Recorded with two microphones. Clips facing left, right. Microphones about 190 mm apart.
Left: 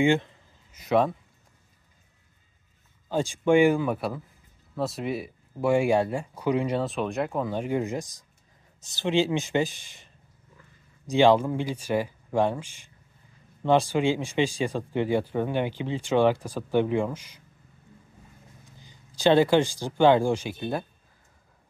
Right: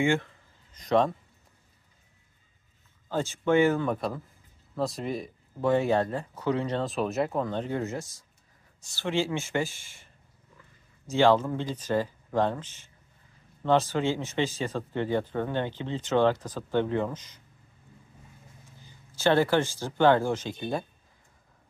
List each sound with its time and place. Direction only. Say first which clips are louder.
0.0 s a man's voice: left 3 dB; 20° left (ahead or behind)
0.7 s speech: left 1 dB; 5° left (ahead or behind)
3.1 s speech: left 3 dB; 15° left (ahead or behind)
6.9 s speech: even; centre (ahead or behind); by 10.0 s 20° left (ahead or behind)
11.1 s speech: left 2 dB; 15° left (ahead or behind)
18.9 s speech: left 3 dB; 15° left (ahead or behind)